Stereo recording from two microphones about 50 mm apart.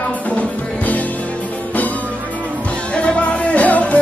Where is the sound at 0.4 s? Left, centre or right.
Left.